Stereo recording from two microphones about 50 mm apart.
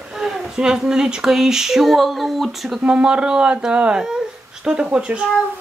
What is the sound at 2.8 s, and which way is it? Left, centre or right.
Speech, right.